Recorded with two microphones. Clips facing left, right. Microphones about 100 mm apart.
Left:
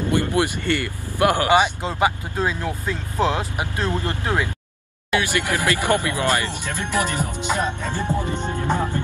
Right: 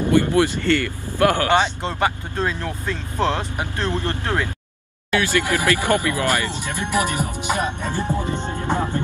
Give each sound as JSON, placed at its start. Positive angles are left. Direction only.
{"t": 0.3, "sound": "speech", "side_deg": 15}
{"t": 1.5, "sound": "speech", "side_deg": 5}
{"t": 6.6, "sound": "music", "side_deg": -15}